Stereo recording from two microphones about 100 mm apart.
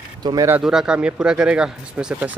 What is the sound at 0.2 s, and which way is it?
Speech, 45° right (ahead or behind).